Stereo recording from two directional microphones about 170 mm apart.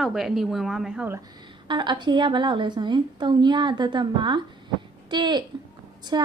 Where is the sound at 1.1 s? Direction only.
25° right (ahead or behind).